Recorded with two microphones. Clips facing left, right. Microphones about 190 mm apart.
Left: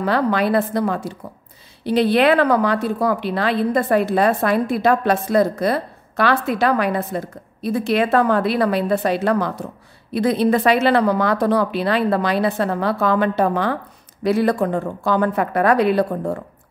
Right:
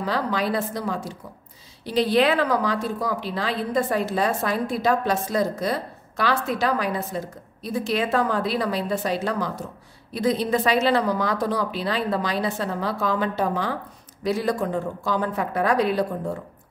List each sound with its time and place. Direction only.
0.0 s a woman's voice: 60° left (ahead or behind)